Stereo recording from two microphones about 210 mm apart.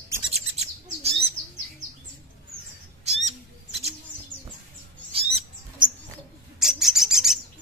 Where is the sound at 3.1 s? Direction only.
30° right (ahead or behind).